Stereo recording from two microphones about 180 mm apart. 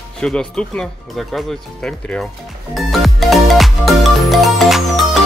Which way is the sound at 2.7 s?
Centre (ahead or behind).